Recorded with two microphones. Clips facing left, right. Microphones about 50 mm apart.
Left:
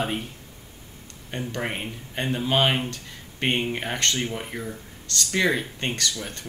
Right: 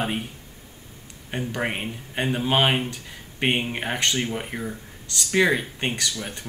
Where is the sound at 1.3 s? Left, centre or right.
Centre.